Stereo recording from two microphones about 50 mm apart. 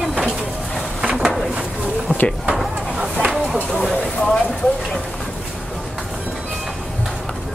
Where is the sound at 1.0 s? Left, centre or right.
Centre.